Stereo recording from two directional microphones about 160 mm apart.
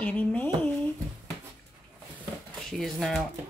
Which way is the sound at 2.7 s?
Centre (ahead or behind).